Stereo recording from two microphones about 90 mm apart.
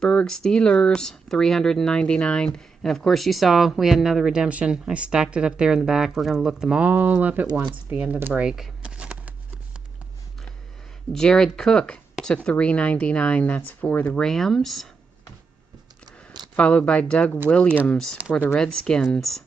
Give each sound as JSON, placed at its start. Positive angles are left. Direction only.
{"t": 0.0, "sound": "speech", "side_deg": 10}
{"t": 6.9, "sound": "speech", "side_deg": -15}
{"t": 11.1, "sound": "speech", "side_deg": 5}
{"t": 14.1, "sound": "speech", "side_deg": 5}
{"t": 16.5, "sound": "speech", "side_deg": 15}